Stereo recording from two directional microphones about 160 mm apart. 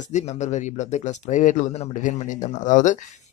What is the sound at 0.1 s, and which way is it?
Speech, 45° left (ahead or behind).